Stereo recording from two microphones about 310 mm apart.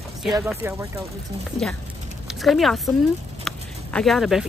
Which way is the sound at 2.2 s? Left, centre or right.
Centre.